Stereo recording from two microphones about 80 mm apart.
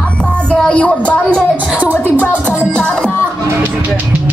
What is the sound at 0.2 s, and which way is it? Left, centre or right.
Music, centre.